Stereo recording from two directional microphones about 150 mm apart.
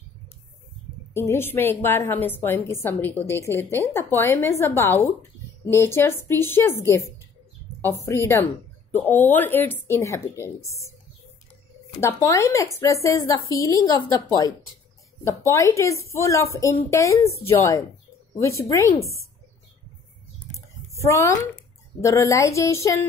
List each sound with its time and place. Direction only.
1.1 s a woman's voice: 15° left (ahead or behind)
7.8 s a woman's voice: 20° left (ahead or behind)
12.0 s a woman's voice: 20° left (ahead or behind)
18.4 s a woman's voice: 20° left (ahead or behind)
21.0 s a woman's voice: 20° left (ahead or behind)